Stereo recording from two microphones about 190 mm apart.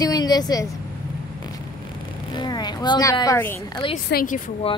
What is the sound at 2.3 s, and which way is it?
Speech, 20° left (ahead or behind).